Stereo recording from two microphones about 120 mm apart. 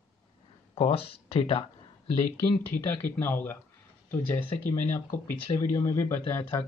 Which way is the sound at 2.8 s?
20° left (ahead or behind).